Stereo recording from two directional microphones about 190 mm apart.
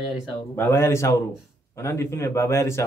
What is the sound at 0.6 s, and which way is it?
A man's voice, 10° left (ahead or behind).